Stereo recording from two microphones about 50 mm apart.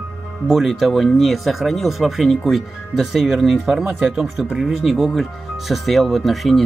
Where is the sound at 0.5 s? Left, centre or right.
Centre.